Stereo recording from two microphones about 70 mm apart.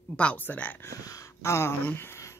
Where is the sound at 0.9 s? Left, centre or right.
Left.